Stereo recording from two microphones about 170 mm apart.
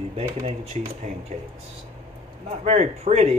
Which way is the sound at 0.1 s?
35° right (ahead or behind).